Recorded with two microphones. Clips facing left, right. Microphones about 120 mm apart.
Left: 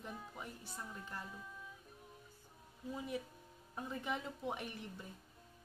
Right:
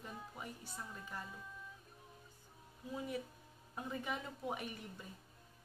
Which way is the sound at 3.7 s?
Centre (ahead or behind).